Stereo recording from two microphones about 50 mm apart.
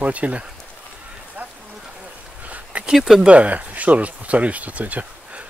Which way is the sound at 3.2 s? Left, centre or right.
Right.